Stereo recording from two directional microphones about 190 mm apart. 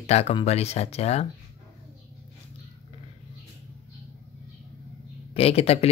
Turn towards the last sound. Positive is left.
turn(degrees=30)  # may be behind; listen again after turning